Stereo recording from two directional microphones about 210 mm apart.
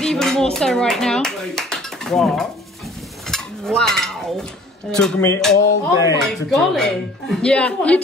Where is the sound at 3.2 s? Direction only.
Centre (ahead or behind).